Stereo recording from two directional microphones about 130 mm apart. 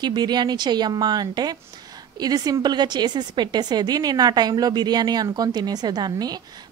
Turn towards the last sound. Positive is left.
turn(degrees=-30)  # may be behind; listen again after turning